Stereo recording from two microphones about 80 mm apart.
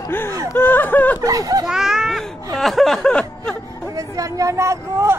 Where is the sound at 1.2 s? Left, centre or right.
Right.